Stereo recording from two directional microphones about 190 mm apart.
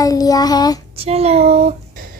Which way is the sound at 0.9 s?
30° right (ahead or behind).